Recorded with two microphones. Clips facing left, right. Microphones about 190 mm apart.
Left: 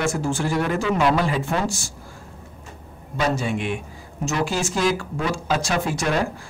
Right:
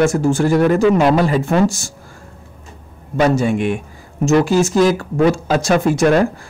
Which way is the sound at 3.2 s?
45° right (ahead or behind).